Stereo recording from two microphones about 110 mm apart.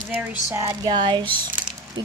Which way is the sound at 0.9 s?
45° right (ahead or behind).